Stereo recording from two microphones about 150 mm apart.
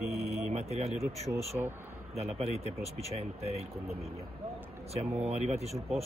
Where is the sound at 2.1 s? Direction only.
45° right (ahead or behind).